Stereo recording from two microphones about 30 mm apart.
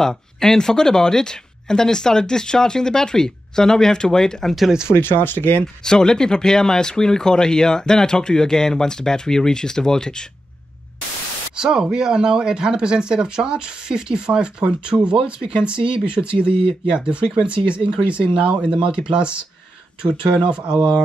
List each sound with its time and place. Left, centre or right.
0.0 s speech: centre
5.9 s speech: left
11.5 s a sound: right
11.8 s speech: right